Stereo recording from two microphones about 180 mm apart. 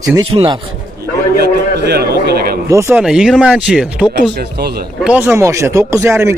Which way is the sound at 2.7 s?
10° right (ahead or behind).